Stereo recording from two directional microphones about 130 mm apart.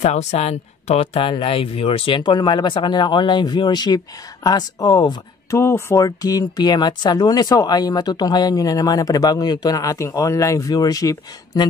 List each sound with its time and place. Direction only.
0.0 s speech: 60° left (ahead or behind); by 5.1 s 30° left (ahead or behind)
5.5 s speech: 20° left (ahead or behind)